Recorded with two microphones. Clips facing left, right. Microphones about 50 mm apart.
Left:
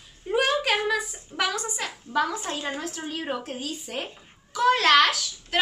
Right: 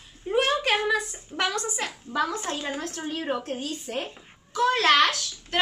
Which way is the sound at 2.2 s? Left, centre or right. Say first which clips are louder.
Left 1 dB; centre.